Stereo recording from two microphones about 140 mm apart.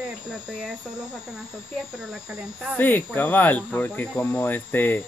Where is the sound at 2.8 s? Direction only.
15° left (ahead or behind).